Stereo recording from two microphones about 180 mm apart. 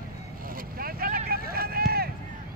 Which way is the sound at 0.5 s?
55° right (ahead or behind).